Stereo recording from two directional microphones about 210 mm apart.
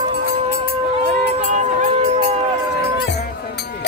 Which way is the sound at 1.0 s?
35° right (ahead or behind).